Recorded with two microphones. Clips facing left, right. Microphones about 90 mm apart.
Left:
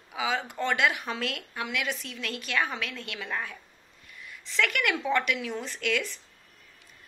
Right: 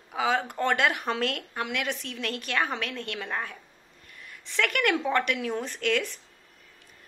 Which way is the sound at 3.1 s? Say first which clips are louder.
Left 1 dB; 30° right (ahead or behind).